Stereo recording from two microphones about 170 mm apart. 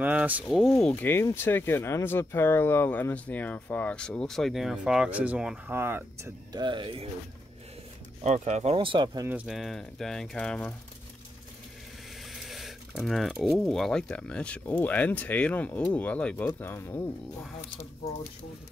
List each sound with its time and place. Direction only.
0.0 s speech: 10° right (ahead or behind)
6.5 s speech: 25° right (ahead or behind)
8.2 s speech: 40° right (ahead or behind)
8.7 s speech: 30° right (ahead or behind)
9.3 s speech: 5° right (ahead or behind)
12.3 s speech: centre (ahead or behind)